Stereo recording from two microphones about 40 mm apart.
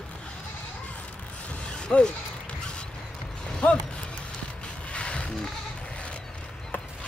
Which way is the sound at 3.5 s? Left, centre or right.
Left.